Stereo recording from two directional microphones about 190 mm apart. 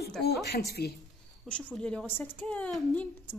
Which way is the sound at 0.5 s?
55° left (ahead or behind).